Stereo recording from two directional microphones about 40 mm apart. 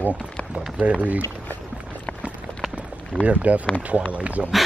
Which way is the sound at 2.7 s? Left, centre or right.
Right.